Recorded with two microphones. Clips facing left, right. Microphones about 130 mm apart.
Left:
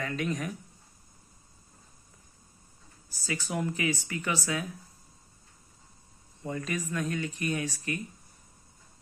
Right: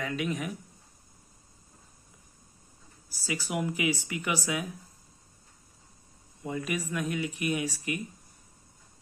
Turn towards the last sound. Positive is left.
turn(degrees=-15)  # may be behind; listen again after turning